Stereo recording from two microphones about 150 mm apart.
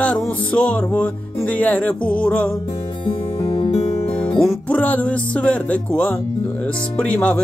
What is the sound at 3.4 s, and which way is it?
Music, 25° left (ahead or behind).